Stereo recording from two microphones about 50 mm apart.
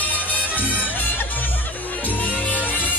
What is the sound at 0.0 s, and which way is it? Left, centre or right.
Music, left.